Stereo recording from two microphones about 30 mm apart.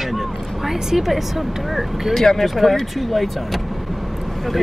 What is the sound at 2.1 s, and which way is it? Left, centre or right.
Speech, centre.